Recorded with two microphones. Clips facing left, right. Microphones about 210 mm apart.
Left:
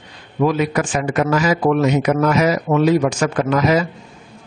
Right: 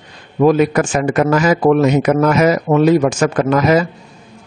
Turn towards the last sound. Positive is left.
turn(degrees=-50)  # may be behind; listen again after turning